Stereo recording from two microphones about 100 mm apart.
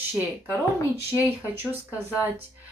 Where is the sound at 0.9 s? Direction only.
25° right (ahead or behind).